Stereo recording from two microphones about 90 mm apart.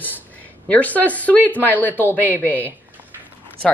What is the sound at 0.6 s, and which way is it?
Speech, 15° left (ahead or behind).